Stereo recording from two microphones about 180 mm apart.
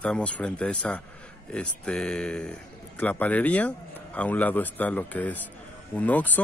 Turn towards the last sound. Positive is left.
turn(degrees=10)  # may be behind; listen again after turning